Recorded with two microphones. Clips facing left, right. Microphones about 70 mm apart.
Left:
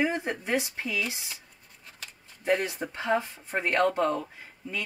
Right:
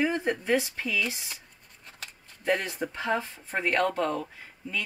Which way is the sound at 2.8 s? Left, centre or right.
Centre.